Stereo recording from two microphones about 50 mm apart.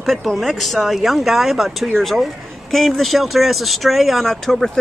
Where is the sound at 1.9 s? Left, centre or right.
Centre.